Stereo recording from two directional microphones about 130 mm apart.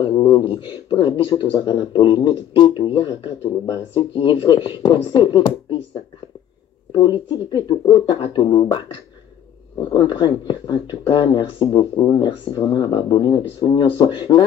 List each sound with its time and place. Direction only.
0.0 s speech: 35° left (ahead or behind)
6.9 s speech: 35° left (ahead or behind)